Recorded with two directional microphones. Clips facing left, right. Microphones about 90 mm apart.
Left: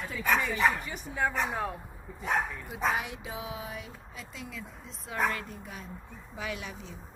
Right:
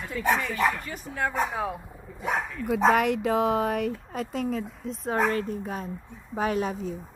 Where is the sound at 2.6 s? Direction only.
75° right (ahead or behind); by 6.9 s 40° right (ahead or behind).